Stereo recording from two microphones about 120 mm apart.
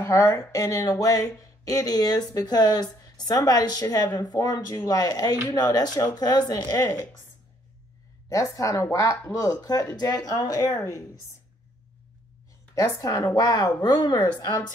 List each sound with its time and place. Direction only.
0.0 s speech: 25° left (ahead or behind)
8.3 s a woman's voice: 30° left (ahead or behind)
12.7 s a woman's voice: 30° left (ahead or behind)